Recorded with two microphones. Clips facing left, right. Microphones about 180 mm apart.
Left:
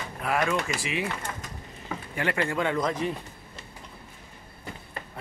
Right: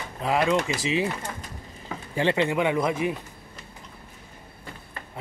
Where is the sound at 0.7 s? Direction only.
25° right (ahead or behind).